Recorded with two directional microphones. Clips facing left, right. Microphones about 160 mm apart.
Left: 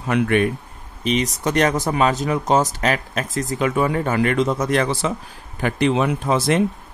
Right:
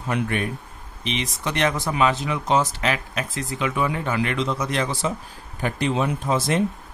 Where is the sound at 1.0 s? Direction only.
40° left (ahead or behind); by 5.1 s 60° left (ahead or behind).